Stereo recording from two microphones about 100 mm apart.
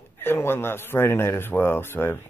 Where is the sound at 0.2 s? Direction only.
20° left (ahead or behind).